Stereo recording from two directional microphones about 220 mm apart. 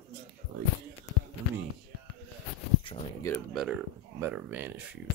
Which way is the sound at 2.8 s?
15° left (ahead or behind).